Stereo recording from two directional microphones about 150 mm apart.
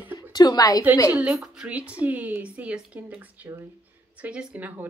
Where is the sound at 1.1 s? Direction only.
5° right (ahead or behind).